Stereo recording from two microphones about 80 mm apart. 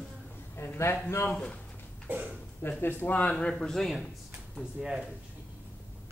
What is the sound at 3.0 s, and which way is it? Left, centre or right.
Speech, centre.